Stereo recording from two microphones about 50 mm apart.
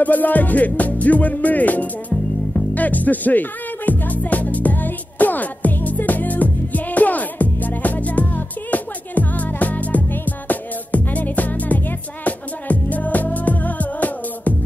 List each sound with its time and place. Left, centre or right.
0.0 s music: left